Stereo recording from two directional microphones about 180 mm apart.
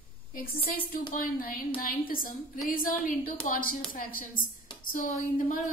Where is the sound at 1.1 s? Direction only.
50° left (ahead or behind).